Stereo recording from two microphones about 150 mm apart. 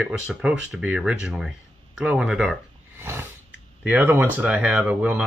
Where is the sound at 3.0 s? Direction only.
15° right (ahead or behind).